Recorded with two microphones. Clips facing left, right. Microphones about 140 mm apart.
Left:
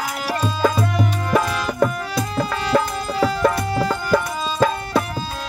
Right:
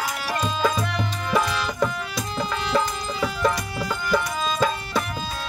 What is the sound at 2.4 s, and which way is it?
Music, 40° left (ahead or behind).